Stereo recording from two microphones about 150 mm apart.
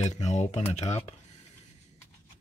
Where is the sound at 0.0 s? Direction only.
50° left (ahead or behind).